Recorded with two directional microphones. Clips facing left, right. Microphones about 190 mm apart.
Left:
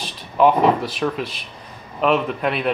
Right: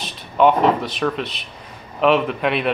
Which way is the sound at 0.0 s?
5° left (ahead or behind).